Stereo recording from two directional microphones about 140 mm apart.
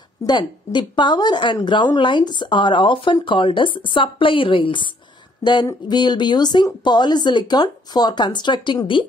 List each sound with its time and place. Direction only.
0.3 s speech: 35° left (ahead or behind)